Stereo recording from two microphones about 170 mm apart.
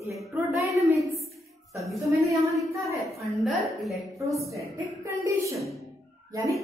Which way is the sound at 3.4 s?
Centre (ahead or behind).